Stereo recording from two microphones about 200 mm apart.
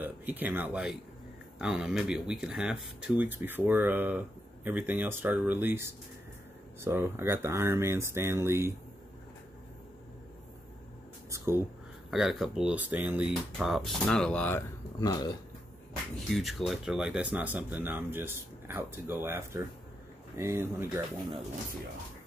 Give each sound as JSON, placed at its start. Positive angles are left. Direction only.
{"t": 0.0, "sound": "speech", "side_deg": -10}
{"t": 11.2, "sound": "a sound", "side_deg": -15}
{"t": 12.1, "sound": "speech", "side_deg": 0}
{"t": 15.0, "sound": "speech", "side_deg": 20}
{"t": 16.2, "sound": "speech", "side_deg": 0}